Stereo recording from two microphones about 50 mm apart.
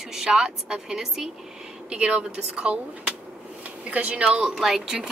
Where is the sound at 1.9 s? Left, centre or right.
Right.